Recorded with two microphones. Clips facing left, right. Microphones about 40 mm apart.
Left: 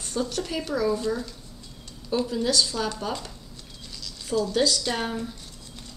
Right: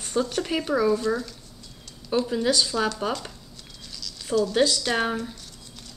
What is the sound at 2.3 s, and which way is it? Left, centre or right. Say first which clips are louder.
Speech: right 1 dB; centre.